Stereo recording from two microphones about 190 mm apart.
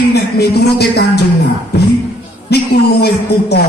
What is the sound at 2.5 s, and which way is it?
A man's voice, 60° left (ahead or behind).